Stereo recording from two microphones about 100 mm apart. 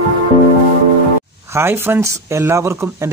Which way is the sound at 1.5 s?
25° right (ahead or behind).